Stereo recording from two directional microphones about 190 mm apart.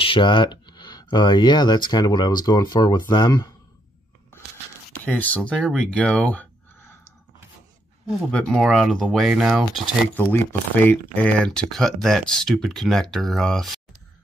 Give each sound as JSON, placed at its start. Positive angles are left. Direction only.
{"t": 0.0, "sound": "speech", "side_deg": 25}
{"t": 4.9, "sound": "speech", "side_deg": 10}
{"t": 8.3, "sound": "speech", "side_deg": 0}
{"t": 10.1, "sound": "speech", "side_deg": 10}